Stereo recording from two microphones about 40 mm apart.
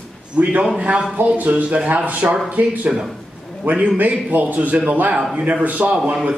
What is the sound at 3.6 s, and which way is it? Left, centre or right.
Speech, right.